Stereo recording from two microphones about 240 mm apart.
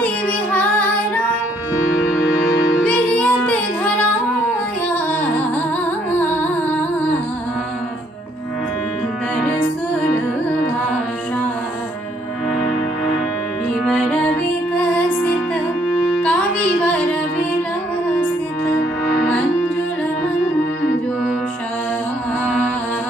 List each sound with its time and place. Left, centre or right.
0.0 s child singing: centre
2.7 s music: centre
13.8 s music: centre